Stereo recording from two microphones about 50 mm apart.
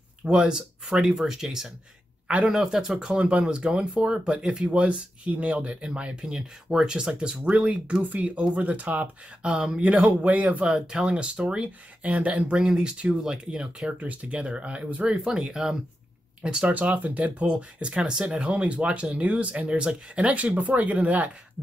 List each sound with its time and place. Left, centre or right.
0.2 s speech: centre
1.0 s speech: centre
2.2 s speech: right
2.5 s speech: centre; by 10.6 s right
10.6 s speech: centre
15.2 s speech: centre
16.7 s speech: right
20.3 s speech: right